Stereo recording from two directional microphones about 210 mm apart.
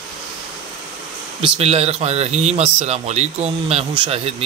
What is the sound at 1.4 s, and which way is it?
Speech, 30° right (ahead or behind).